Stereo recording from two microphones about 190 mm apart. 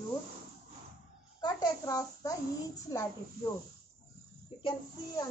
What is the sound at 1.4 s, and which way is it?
A woman's voice, 20° left (ahead or behind).